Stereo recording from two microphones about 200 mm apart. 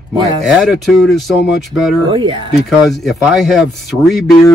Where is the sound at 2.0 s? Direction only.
25° right (ahead or behind).